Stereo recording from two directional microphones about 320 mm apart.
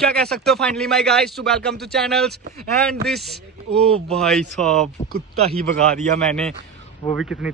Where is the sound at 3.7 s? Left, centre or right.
Centre.